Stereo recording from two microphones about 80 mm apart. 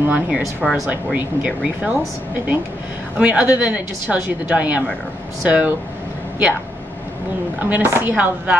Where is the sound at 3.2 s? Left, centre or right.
Centre.